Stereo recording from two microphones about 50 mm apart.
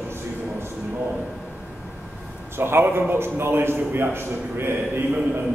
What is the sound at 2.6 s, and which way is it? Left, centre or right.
A man's voice, right.